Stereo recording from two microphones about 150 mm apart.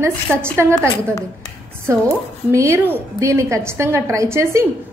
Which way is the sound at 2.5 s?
20° right (ahead or behind).